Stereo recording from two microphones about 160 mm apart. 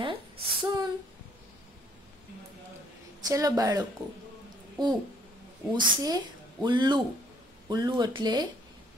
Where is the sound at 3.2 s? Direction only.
20° right (ahead or behind).